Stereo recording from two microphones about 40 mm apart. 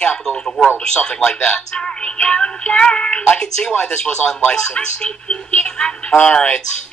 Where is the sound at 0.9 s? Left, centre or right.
Left.